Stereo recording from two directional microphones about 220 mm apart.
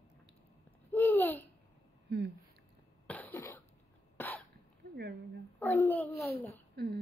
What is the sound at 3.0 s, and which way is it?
Cough, 5° left (ahead or behind).